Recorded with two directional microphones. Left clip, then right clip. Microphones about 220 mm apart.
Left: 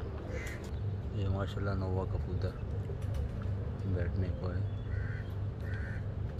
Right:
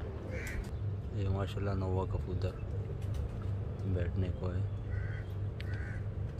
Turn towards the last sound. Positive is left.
turn(degrees=-5)  # may be behind; listen again after turning